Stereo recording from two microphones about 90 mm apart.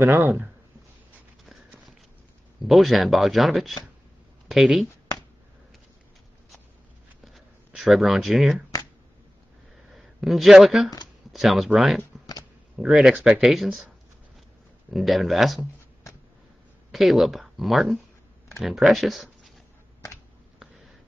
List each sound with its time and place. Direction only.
0.0 s speech: 25° right (ahead or behind)
2.6 s speech: centre (ahead or behind)
7.3 s speech: centre (ahead or behind)
9.9 s speech: centre (ahead or behind)
14.9 s speech: centre (ahead or behind)
16.9 s speech: centre (ahead or behind)